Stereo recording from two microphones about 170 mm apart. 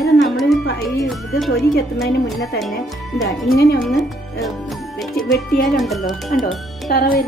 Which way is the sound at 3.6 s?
65° left (ahead or behind).